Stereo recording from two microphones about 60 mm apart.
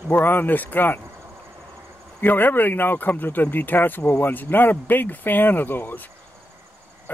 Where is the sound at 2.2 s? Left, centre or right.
Left.